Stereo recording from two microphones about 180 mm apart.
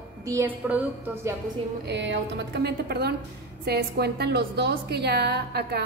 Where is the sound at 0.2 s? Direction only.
15° right (ahead or behind).